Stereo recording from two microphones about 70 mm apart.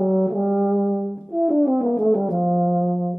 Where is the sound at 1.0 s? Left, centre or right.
Right.